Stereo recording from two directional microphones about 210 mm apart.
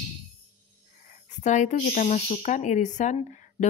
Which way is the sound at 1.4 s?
35° left (ahead or behind).